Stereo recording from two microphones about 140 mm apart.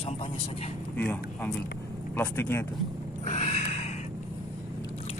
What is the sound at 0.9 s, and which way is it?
A man's voice, 15° left (ahead or behind).